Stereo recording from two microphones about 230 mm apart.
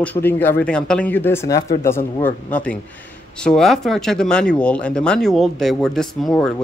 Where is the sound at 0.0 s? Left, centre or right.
Centre.